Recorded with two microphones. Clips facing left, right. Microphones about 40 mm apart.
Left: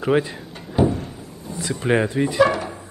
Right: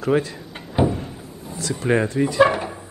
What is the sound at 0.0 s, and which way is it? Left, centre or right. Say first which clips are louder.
Speech: left 1 dB; centre.